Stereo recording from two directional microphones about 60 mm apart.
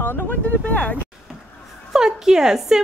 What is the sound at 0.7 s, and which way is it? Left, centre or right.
Speech, left.